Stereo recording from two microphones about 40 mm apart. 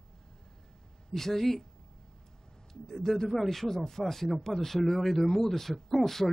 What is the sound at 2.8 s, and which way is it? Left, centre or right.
Speech, centre.